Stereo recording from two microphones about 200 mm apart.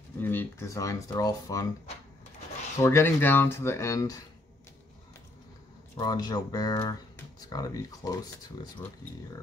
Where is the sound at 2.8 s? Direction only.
10° left (ahead or behind).